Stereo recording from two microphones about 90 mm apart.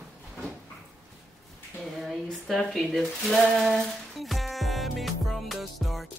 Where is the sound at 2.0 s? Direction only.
5° left (ahead or behind).